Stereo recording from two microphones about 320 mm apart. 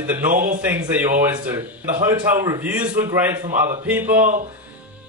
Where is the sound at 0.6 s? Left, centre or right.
Centre.